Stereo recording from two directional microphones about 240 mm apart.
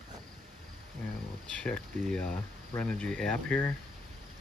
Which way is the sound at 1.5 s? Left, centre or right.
Centre.